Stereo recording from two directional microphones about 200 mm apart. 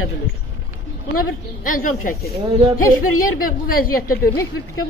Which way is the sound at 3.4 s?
45° left (ahead or behind).